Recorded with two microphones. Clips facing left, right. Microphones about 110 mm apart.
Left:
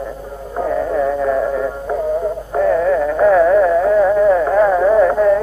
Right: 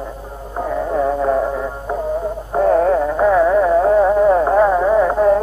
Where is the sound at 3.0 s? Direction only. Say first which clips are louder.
Left 2 dB; 25° right (ahead or behind).